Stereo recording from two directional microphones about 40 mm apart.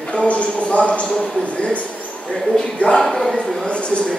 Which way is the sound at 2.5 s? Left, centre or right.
Centre.